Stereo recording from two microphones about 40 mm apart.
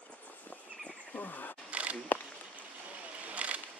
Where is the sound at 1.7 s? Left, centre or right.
Right.